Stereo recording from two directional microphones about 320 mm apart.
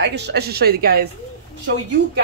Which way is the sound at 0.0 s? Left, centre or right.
Right.